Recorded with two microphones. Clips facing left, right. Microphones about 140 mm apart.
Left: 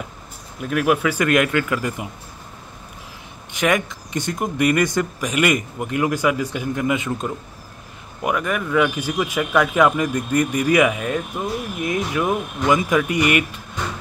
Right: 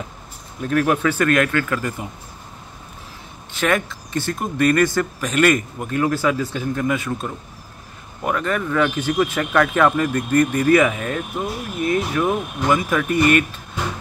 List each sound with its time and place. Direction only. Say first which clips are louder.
0.6 s speech: even; 5° left (ahead or behind)
3.5 s speech: left 1 dB; 15° left (ahead or behind)